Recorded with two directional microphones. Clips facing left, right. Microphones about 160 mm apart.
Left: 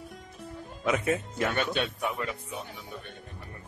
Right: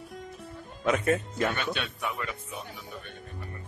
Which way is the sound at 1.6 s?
45° left (ahead or behind).